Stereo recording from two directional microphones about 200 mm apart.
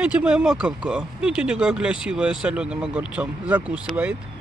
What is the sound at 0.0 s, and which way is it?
Speech, 5° right (ahead or behind).